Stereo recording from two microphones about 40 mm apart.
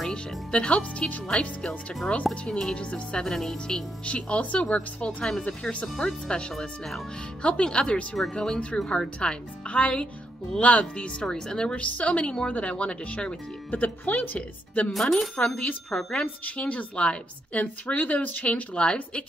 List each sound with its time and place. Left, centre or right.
0.1 s a woman's voice: left
3.2 s speech: centre
4.0 s a woman's voice: left
4.6 s a woman's voice: left
5.6 s a woman's voice: left
5.9 s a woman's voice: left
7.4 s a woman's voice: left
11.2 s speech: centre
11.7 s a woman's voice: left
13.7 s speech: left
14.9 s speech: centre
15.3 s a woman's voice: left
15.9 s speech: centre
16.2 s a woman's voice: left